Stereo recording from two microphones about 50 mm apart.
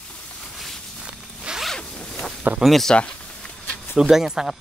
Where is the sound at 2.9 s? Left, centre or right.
Left.